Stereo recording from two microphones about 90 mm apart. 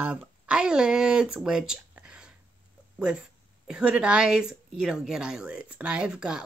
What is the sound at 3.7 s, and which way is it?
A woman's voice, 10° right (ahead or behind).